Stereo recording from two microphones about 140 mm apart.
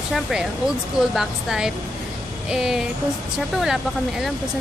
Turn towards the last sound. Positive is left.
turn(degrees=-5)  # may be behind; listen again after turning